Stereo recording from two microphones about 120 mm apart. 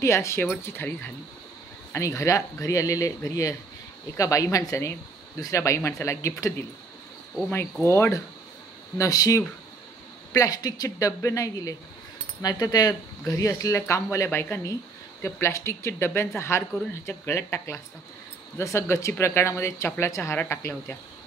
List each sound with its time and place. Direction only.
0.0 s speech: 25° left (ahead or behind)
7.8 s speech: 25° left (ahead or behind)